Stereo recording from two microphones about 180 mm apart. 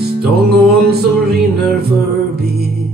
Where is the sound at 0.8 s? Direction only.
60° right (ahead or behind).